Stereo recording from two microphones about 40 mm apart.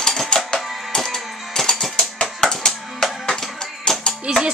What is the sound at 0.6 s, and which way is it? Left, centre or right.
Music, centre.